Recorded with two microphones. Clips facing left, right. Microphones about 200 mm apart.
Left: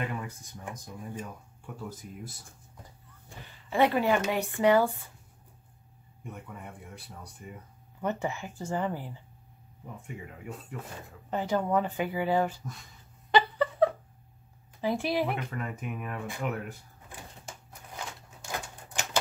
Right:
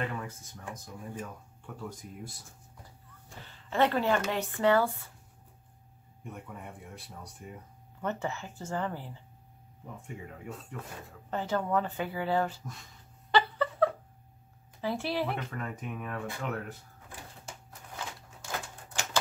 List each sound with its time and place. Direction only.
0.0 s speech: 15° left (ahead or behind)
1.9 s speech: centre (ahead or behind)
3.4 s speech: 10° left (ahead or behind)
6.2 s speech: centre (ahead or behind)
8.0 s speech: 15° left (ahead or behind)
13.3 s a sound: 15° left (ahead or behind)
14.8 s speech: 15° left (ahead or behind)